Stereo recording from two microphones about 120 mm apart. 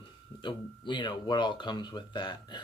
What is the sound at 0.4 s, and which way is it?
Speech, 40° left (ahead or behind).